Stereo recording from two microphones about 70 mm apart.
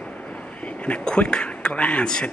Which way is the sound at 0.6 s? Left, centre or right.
Centre.